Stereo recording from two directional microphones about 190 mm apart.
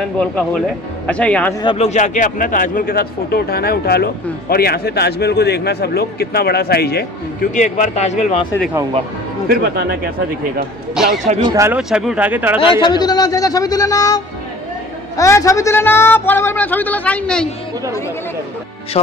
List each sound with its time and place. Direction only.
0.2 s speech: 5° left (ahead or behind)
1.6 s a man's voice: 30° left (ahead or behind); by 7.1 s 55° left (ahead or behind)
7.5 s speech: 40° left (ahead or behind)
9.5 s speech: 55° right (ahead or behind)
11.4 s speech: 15° right (ahead or behind)
11.9 s speech: 5° right (ahead or behind)
12.5 s a man's voice: 25° left (ahead or behind); by 17.5 s 5° left (ahead or behind)